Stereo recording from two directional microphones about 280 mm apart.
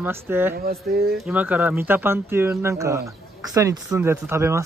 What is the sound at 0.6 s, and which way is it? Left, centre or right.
Speech, right.